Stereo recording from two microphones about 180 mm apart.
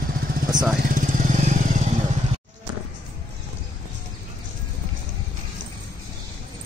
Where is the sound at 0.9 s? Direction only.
45° right (ahead or behind).